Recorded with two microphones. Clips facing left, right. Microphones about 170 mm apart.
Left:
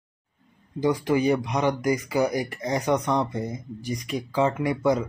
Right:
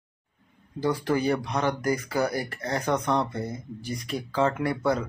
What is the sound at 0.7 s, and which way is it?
Speech, 15° left (ahead or behind).